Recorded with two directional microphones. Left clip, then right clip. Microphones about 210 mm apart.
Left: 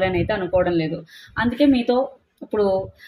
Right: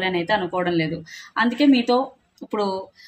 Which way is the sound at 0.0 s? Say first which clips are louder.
Even; 25° right (ahead or behind).